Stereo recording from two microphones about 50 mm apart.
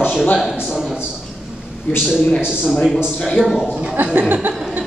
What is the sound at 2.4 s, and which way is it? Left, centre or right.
Speech, centre.